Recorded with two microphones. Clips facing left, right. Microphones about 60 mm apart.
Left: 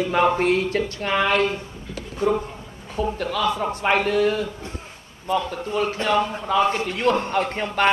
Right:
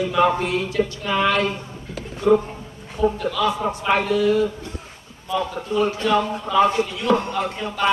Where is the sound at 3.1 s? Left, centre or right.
Left.